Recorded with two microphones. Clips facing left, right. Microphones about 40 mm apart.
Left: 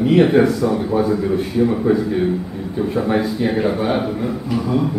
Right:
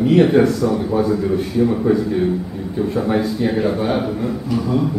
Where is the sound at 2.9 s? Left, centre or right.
Centre.